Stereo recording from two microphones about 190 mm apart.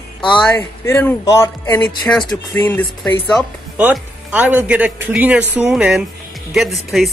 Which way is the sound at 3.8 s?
5° right (ahead or behind).